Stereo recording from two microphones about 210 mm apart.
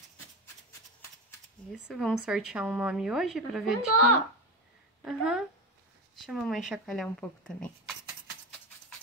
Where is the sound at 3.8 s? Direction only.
90° left.